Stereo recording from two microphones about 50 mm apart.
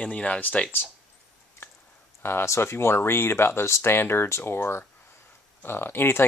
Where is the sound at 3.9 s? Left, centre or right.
Left.